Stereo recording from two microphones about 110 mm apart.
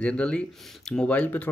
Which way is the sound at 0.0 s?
10° left (ahead or behind).